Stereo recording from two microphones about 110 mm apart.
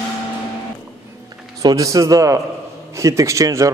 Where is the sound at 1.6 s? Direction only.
35° right (ahead or behind).